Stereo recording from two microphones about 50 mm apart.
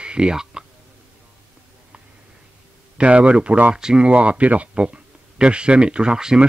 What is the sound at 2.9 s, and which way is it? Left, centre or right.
Speech, right.